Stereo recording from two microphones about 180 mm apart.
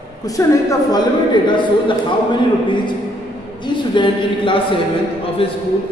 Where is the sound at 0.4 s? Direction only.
20° left (ahead or behind).